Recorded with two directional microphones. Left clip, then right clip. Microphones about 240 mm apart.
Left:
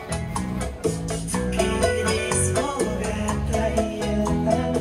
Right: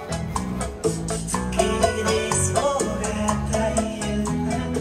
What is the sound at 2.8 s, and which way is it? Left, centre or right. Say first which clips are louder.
Music: even; centre.